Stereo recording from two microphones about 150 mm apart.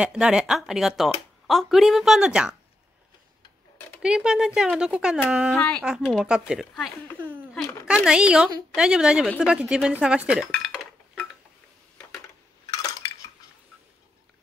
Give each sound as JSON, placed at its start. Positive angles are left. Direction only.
{"t": 0.0, "sound": "speech", "side_deg": -5}
{"t": 4.0, "sound": "speech", "side_deg": -5}
{"t": 5.6, "sound": "speech", "side_deg": 5}
{"t": 5.9, "sound": "speech", "side_deg": -5}
{"t": 7.2, "sound": "dishes", "side_deg": -15}
{"t": 7.5, "sound": "a sound", "side_deg": -5}
{"t": 8.7, "sound": "speech", "side_deg": -5}
{"t": 9.4, "sound": "dishes", "side_deg": -5}
{"t": 10.5, "sound": "cutlery", "side_deg": 0}
{"t": 12.7, "sound": "cutlery", "side_deg": 25}